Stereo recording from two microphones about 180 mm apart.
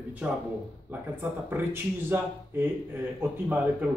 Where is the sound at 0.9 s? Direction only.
10° right (ahead or behind).